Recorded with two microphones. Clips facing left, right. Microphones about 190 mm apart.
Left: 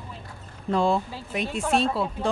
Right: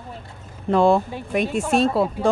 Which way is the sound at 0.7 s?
60° right (ahead or behind).